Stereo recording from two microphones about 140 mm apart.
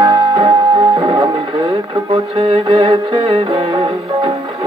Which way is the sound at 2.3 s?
40° right (ahead or behind).